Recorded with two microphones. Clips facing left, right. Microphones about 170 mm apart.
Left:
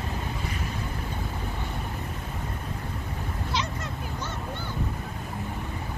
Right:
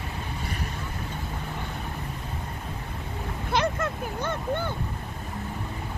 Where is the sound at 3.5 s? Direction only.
55° right (ahead or behind).